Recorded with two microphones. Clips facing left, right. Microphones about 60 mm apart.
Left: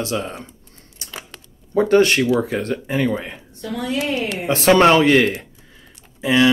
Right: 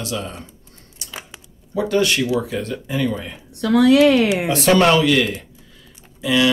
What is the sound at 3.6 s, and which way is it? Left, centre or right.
Speech, right.